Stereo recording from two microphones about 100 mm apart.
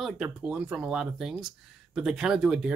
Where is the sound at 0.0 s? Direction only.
5° right (ahead or behind).